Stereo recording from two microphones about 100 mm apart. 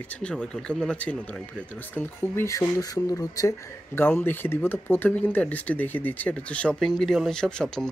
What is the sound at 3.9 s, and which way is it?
Speech, 20° left (ahead or behind).